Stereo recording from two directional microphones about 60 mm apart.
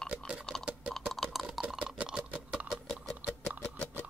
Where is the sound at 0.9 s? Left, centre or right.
Centre.